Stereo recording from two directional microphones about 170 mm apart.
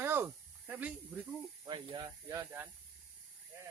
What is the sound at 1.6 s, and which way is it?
Speech, 25° right (ahead or behind).